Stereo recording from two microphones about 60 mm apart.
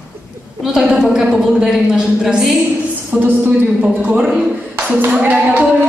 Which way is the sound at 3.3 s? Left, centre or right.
Right.